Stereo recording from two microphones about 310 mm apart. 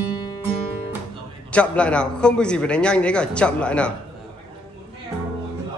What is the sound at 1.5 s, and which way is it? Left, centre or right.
A man's voice, centre.